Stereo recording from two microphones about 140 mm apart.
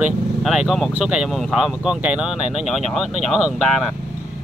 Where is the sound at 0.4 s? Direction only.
5° right (ahead or behind).